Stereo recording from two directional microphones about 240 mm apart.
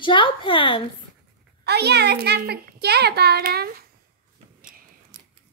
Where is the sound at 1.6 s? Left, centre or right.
Right.